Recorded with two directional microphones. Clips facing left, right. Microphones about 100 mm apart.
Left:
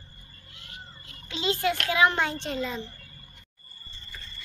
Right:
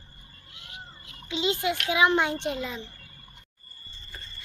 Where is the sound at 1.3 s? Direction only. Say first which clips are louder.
Even; 20° right (ahead or behind).